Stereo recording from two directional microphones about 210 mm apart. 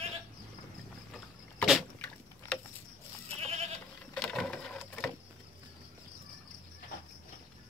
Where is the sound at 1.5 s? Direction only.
5° left (ahead or behind).